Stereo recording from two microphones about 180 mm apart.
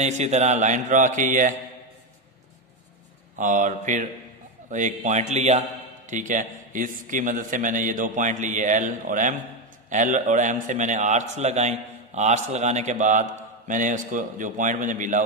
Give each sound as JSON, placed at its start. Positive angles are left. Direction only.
{"t": 0.0, "sound": "a man's voice", "side_deg": -40}
{"t": 3.3, "sound": "a man's voice", "side_deg": -45}